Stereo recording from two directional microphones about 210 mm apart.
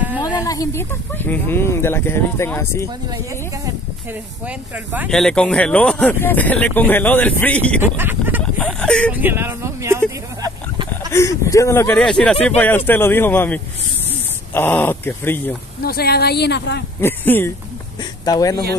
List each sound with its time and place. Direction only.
0.2 s speech: 15° left (ahead or behind)
4.5 s speech: 5° right (ahead or behind)
7.8 s a sound: 10° right (ahead or behind)
8.5 s speech: 5° left (ahead or behind)
9.1 s a sound: 10° right (ahead or behind)
11.1 s speech: 15° left (ahead or behind)
15.8 s speech: 45° left (ahead or behind)
17.0 s speech: 10° left (ahead or behind)